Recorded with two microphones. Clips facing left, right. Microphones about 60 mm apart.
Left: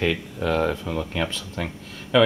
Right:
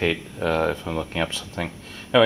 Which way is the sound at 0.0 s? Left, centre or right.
Centre.